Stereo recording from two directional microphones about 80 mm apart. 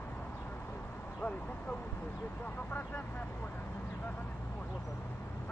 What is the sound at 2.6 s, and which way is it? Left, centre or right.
Speech, left.